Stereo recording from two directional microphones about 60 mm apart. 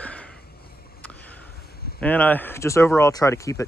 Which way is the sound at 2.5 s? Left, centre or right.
Left.